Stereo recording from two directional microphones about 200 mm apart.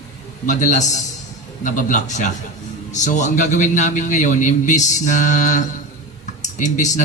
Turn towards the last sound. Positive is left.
turn(degrees=35)  # may be behind; listen again after turning